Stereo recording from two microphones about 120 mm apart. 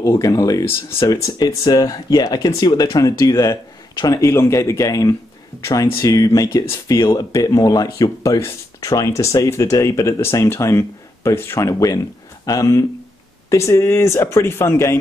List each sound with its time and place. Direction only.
0.0 s speech: 30° left (ahead or behind)